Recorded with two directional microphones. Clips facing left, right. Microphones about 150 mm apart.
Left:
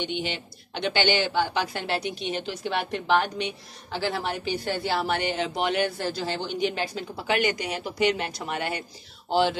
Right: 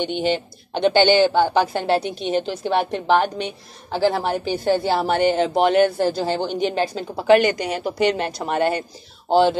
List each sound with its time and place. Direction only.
0.0 s speech: 45° right (ahead or behind)